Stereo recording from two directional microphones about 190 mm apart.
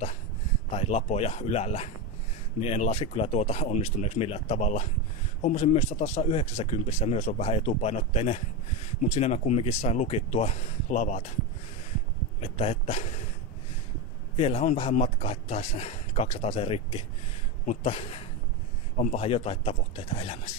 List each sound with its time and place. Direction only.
0.7 s speech: 35° left (ahead or behind)
12.4 s speech: 35° left (ahead or behind)
14.3 s speech: 35° left (ahead or behind)